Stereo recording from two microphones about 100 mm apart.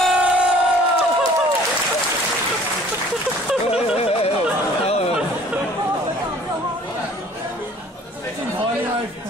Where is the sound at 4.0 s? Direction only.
90° left.